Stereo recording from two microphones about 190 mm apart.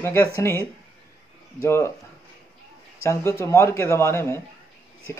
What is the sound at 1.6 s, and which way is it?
Speech, 15° left (ahead or behind).